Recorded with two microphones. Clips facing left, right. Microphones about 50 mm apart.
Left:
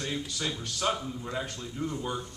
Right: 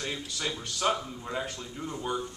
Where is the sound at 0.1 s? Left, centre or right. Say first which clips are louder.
Left 1 dB; centre.